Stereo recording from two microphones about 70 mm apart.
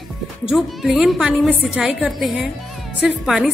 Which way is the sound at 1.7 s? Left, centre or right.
Centre.